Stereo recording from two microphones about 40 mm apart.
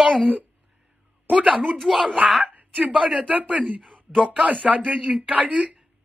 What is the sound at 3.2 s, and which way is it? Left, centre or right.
Speech, right.